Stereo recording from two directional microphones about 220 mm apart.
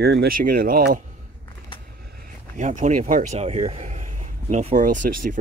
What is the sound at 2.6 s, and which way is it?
Speech, 35° right (ahead or behind).